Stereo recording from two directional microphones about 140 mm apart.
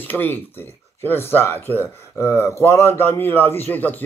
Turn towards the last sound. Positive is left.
turn(degrees=10)  # may be behind; listen again after turning